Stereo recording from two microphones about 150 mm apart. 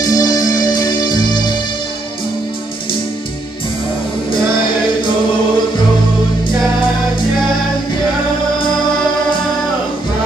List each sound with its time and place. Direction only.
0.0 s music: 25° left (ahead or behind)